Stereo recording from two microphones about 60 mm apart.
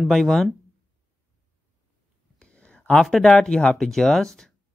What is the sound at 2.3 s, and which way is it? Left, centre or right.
Whispering, centre.